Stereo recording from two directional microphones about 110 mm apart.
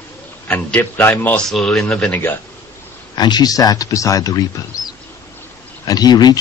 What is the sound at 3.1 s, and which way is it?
Speech, 40° left (ahead or behind).